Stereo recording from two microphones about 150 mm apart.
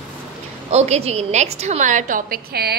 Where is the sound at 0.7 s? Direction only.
45° right (ahead or behind).